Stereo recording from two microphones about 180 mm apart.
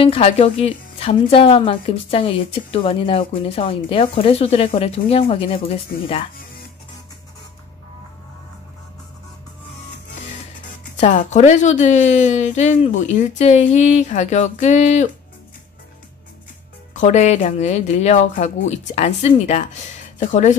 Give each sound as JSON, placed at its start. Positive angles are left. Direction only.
{"t": 0.0, "sound": "a woman's voice", "side_deg": 35}
{"t": 11.0, "sound": "a woman's voice", "side_deg": 40}
{"t": 16.9, "sound": "a woman's voice", "side_deg": 40}